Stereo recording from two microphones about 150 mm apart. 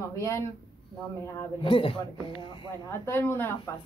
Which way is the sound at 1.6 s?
35° left (ahead or behind).